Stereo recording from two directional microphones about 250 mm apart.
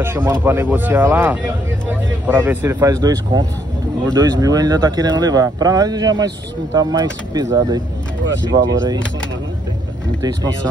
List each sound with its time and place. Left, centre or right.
0.0 s speech: centre